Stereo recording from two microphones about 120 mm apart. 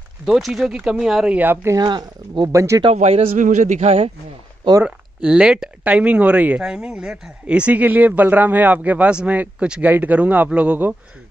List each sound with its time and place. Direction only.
0.2 s speech: centre (ahead or behind); by 1.8 s 20° right (ahead or behind)
1.8 s speech: 40° right (ahead or behind)
2.5 s speech: 25° right (ahead or behind)
2.9 s a man's voice: 60° right (ahead or behind)
4.8 s speech: 10° right (ahead or behind)